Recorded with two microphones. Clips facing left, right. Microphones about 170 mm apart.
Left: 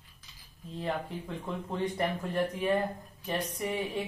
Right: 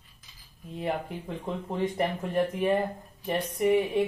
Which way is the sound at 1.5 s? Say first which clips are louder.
Right 3 dB; 20° right (ahead or behind).